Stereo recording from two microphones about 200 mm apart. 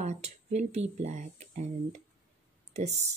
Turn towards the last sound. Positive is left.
turn(degrees=-35)  # may be behind; listen again after turning